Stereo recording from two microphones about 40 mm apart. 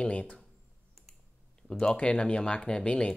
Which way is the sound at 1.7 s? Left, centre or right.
Centre.